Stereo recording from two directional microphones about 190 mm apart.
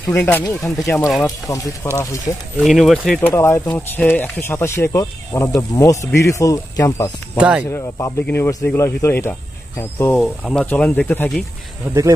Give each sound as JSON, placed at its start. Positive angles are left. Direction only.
{"t": 0.1, "sound": "speech", "side_deg": 10}
{"t": 2.6, "sound": "speech", "side_deg": 0}
{"t": 3.2, "sound": "speech", "side_deg": 15}
{"t": 7.3, "sound": "speech", "side_deg": -5}
{"t": 7.7, "sound": "speech", "side_deg": 10}
{"t": 11.8, "sound": "speech", "side_deg": -10}